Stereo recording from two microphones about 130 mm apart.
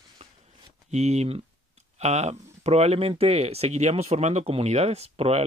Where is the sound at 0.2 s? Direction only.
60° right (ahead or behind).